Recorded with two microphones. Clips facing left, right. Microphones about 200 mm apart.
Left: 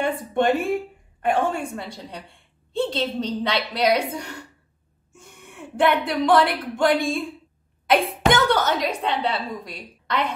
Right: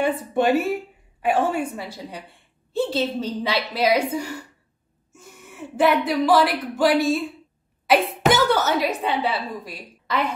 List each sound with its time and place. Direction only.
0.0 s a woman's voice: 5° right (ahead or behind)